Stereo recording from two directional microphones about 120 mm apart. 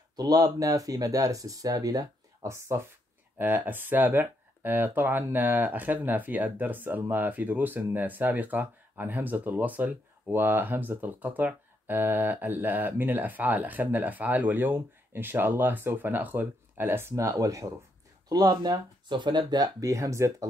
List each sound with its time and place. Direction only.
0.1 s speech: 30° right (ahead or behind)